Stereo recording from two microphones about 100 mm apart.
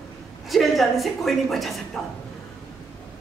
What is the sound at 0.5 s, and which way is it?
A woman's voice, centre (ahead or behind).